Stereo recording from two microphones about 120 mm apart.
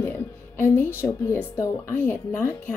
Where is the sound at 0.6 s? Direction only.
15° left (ahead or behind).